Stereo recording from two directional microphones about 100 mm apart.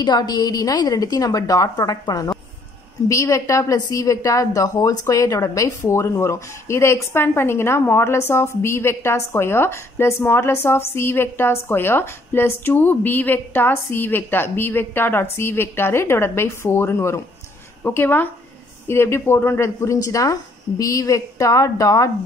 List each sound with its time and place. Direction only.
0.0 s a woman's voice: 45° left (ahead or behind)
3.1 s a woman's voice: 30° left (ahead or behind)